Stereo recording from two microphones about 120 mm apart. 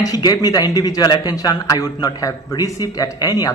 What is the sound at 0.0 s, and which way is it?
A man's voice, 30° left (ahead or behind).